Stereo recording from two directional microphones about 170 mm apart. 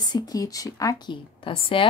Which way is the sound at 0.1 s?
20° left (ahead or behind).